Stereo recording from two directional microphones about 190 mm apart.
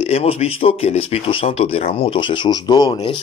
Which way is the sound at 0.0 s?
30° left (ahead or behind).